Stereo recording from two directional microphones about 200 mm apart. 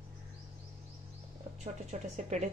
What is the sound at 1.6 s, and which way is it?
Speech, 35° right (ahead or behind).